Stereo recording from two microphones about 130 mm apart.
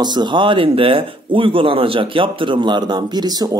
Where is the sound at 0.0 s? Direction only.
35° right (ahead or behind).